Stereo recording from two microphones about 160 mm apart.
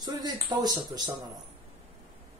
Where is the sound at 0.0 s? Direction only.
25° right (ahead or behind).